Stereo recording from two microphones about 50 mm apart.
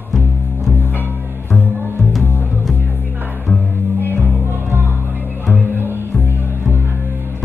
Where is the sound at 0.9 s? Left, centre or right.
Left.